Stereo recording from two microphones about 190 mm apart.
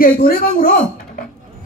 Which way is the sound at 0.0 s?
50° left (ahead or behind).